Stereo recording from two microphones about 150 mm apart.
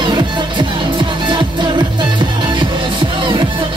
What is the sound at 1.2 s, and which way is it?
Music, 30° right (ahead or behind).